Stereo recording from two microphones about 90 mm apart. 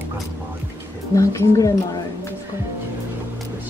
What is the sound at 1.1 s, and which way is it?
Speech, 35° left (ahead or behind).